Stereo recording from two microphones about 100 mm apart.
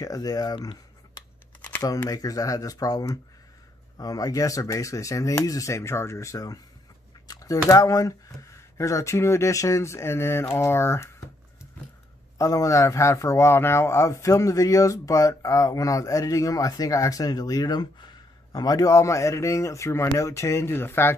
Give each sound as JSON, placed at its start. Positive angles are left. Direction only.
{"t": 0.0, "sound": "a man's voice", "side_deg": 40}
{"t": 1.8, "sound": "a man's voice", "side_deg": 35}
{"t": 12.4, "sound": "a man's voice", "side_deg": 35}